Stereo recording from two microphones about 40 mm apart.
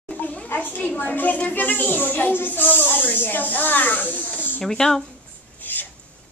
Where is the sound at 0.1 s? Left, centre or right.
Left.